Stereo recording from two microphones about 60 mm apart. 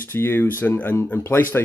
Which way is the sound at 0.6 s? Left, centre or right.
Left.